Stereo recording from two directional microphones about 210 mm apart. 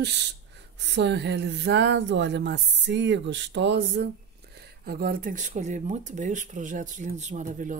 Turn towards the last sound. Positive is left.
turn(degrees=-35)  # may be behind; listen again after turning